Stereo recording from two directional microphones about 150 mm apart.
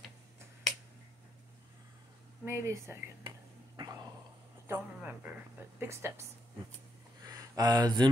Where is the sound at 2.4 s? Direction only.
20° right (ahead or behind).